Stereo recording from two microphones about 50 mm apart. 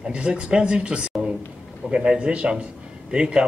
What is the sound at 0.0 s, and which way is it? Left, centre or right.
Speech, centre.